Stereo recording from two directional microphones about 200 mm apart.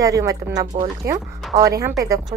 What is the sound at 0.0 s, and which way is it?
Speech, 15° right (ahead or behind).